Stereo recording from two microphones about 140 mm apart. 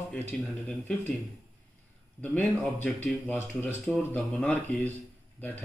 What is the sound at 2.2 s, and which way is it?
Speech, 10° left (ahead or behind).